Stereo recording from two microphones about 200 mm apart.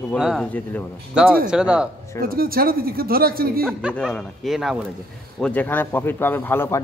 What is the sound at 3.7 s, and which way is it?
A man's voice, 5° right (ahead or behind).